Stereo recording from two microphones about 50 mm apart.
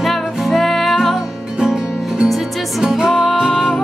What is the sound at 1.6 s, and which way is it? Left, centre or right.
Music, centre.